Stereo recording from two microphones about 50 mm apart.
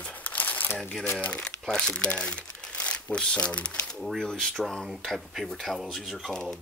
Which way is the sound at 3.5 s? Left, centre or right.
Left.